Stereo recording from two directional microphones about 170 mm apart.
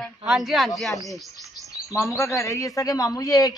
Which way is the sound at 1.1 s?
Centre (ahead or behind).